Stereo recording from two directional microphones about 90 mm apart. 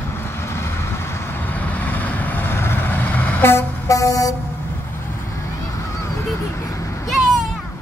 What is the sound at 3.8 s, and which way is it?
Music, 40° left (ahead or behind).